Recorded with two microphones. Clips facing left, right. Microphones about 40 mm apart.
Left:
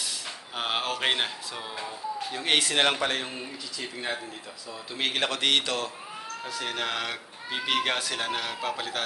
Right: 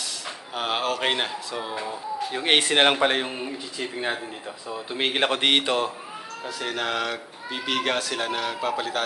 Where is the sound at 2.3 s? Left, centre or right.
Right.